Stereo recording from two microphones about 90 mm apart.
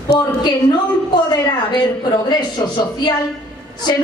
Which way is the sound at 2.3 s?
50° left (ahead or behind).